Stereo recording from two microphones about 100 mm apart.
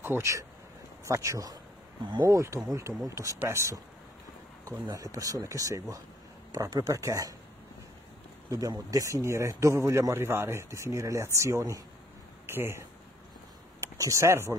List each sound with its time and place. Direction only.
0.0 s a man's voice: 25° right (ahead or behind)
4.9 s speech: 35° right (ahead or behind)
8.5 s a man's voice: 35° right (ahead or behind)